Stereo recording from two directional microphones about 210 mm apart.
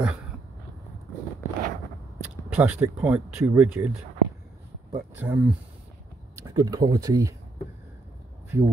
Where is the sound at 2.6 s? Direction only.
5° right (ahead or behind).